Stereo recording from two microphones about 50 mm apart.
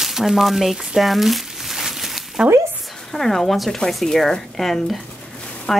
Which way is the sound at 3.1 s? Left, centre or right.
Centre.